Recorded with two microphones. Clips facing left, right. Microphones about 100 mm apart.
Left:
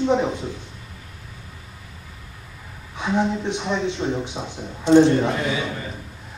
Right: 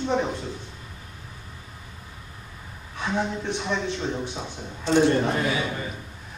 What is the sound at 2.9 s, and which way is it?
Speech, 15° left (ahead or behind).